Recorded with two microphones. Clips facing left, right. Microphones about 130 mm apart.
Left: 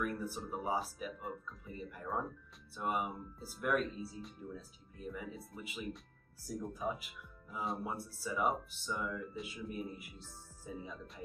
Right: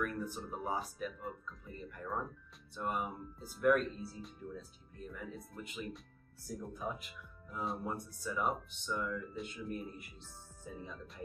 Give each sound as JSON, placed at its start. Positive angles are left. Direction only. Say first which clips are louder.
{"t": 0.0, "sound": "speech", "louder": "even", "side_deg": 5}